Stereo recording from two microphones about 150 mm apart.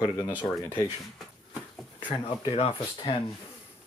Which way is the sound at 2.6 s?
40° left (ahead or behind).